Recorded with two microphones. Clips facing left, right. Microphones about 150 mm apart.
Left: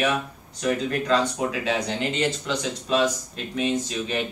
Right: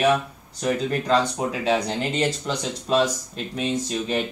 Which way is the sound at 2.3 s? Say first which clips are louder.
Even; 40° right (ahead or behind).